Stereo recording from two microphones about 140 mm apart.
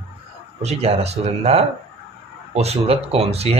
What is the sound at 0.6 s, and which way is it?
Speech, 50° right (ahead or behind).